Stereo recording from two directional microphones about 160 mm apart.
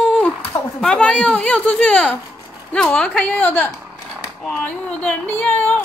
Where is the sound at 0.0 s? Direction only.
5° left (ahead or behind).